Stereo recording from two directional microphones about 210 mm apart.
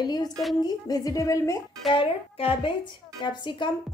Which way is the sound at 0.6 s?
20° left (ahead or behind).